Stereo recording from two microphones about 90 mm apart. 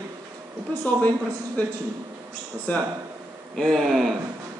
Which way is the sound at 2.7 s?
15° left (ahead or behind).